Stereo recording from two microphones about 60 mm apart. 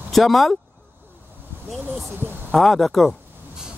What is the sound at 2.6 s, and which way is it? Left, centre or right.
Speech, centre.